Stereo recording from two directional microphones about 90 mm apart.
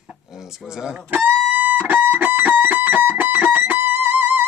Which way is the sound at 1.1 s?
20° right (ahead or behind).